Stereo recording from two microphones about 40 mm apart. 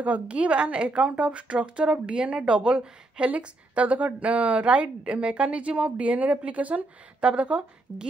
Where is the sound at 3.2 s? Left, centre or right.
Right.